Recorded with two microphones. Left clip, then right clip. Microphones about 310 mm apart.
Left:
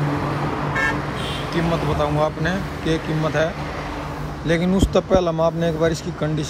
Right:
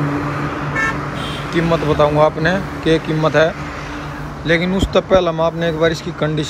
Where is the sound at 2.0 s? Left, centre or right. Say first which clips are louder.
Right 10 dB; centre.